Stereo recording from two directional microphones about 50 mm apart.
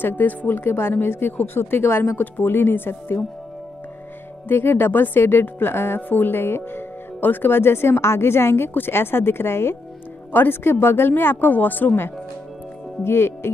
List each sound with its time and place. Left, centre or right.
0.0 s a woman's voice: left
4.5 s a woman's voice: left
13.0 s a woman's voice: left